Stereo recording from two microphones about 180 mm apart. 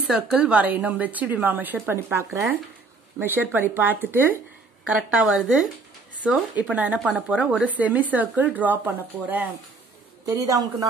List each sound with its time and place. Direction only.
0.0 s a woman's voice: 5° right (ahead or behind); by 10.9 s 20° right (ahead or behind)